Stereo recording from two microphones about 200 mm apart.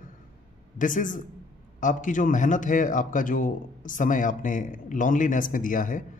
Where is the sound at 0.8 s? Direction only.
40° left (ahead or behind).